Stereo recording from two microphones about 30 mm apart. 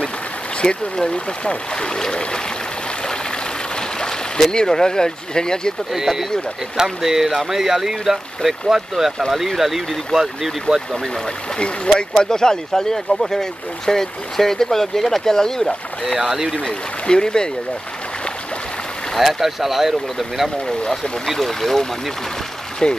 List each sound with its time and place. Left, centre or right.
0.6 s speech: left
3.1 s a sound: left
4.5 s speech: left
5.9 s speech: centre
11.5 s speech: left
12.0 s speech: left
16.2 s speech: centre
16.6 s speech: left
19.1 s speech: centre
21.3 s speech: centre
22.8 s speech: left